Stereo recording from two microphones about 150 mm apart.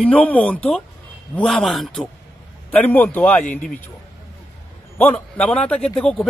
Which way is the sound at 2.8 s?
10° left (ahead or behind).